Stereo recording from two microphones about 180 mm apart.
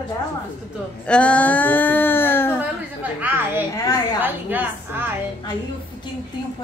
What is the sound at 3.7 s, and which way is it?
Speech, 20° left (ahead or behind).